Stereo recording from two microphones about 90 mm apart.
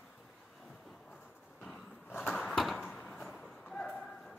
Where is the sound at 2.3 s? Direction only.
Centre (ahead or behind).